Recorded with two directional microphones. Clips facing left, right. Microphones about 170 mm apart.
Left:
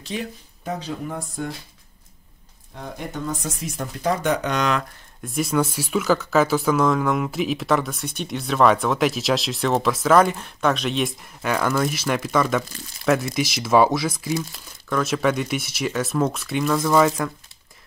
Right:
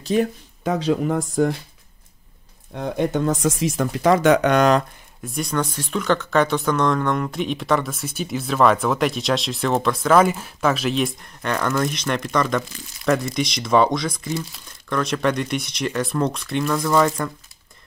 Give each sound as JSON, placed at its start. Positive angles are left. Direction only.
{"t": 0.0, "sound": "speech", "side_deg": -45}
{"t": 0.7, "sound": "speech", "side_deg": -90}
{"t": 2.7, "sound": "speech", "side_deg": -70}
{"t": 5.2, "sound": "speech", "side_deg": 0}